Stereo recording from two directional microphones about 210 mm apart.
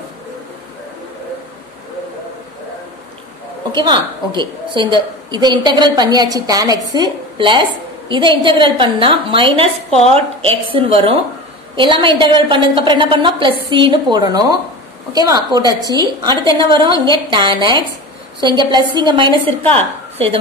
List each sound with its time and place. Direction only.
3.7 s a woman's voice: 20° right (ahead or behind)